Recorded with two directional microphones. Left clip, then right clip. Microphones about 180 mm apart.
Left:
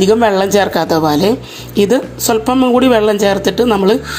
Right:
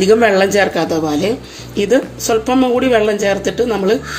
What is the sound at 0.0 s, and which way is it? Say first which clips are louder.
Speech: even; 30° left (ahead or behind).